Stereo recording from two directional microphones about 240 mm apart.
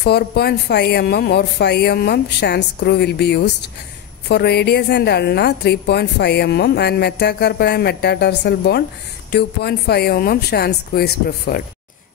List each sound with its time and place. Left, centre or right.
0.0 s a woman's voice: left